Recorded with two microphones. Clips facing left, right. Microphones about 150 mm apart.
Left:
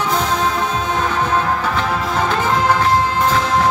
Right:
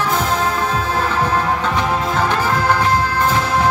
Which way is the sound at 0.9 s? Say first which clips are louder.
Left 1 dB; 10° right (ahead or behind).